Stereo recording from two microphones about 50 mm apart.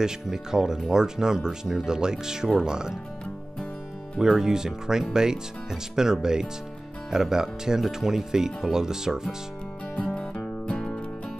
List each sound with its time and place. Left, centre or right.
0.0 s speech: centre
4.2 s speech: centre
10.7 s music: centre